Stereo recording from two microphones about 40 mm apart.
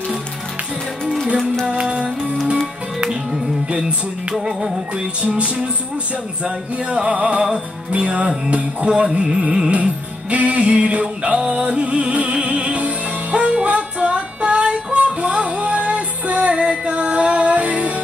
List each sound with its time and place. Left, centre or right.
1.7 s music: right
4.5 s music: centre
6.4 s music: right